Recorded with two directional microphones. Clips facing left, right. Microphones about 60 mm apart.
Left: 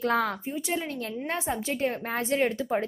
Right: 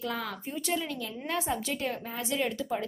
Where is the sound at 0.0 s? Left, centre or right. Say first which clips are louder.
Left 9 dB; left.